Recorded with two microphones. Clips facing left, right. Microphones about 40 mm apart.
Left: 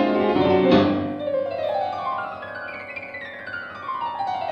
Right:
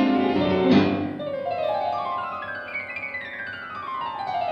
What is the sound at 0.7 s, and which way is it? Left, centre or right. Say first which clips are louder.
Music: left 2 dB; left.